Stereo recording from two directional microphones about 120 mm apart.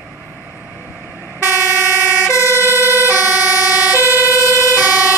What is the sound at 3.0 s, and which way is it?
Emergency vehicle, 30° left (ahead or behind).